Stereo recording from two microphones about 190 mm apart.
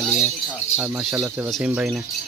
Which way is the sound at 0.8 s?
5° right (ahead or behind).